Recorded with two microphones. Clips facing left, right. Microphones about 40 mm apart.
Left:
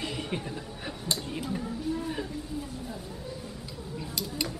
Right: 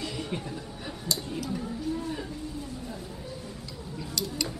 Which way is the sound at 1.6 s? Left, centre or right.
Centre.